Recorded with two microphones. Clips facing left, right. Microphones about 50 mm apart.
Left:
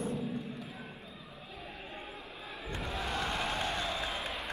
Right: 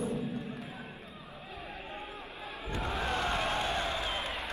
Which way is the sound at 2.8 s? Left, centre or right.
Right.